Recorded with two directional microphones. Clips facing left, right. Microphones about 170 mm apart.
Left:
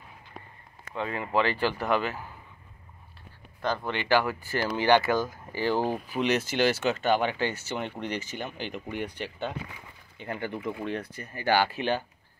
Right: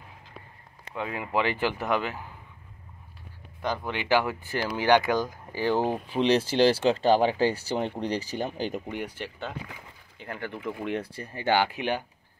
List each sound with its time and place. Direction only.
0.9 s speech: 10° right (ahead or behind)
3.6 s speech: 10° right (ahead or behind); by 8.8 s 40° right (ahead or behind)
8.8 s speech: 10° right (ahead or behind)
11.0 s speech: 30° right (ahead or behind)